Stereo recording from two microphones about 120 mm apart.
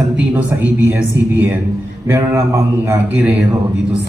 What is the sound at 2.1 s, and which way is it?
Speech, 20° right (ahead or behind).